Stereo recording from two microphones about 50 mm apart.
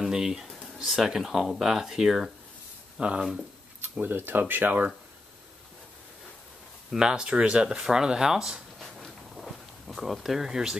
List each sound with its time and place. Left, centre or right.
0.0 s speech: centre
4.0 s speech: right
6.9 s speech: centre
8.7 s walk: centre